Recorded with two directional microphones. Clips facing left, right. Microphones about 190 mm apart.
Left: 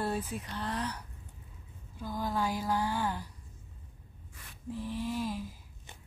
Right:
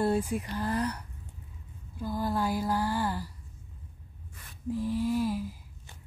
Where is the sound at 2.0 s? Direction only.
10° right (ahead or behind).